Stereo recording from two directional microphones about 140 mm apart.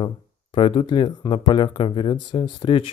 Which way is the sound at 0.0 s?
35° left (ahead or behind).